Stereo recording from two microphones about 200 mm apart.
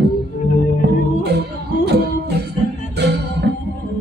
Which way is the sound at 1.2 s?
55° right (ahead or behind).